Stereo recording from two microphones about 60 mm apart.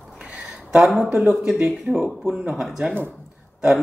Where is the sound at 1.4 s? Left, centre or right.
Centre.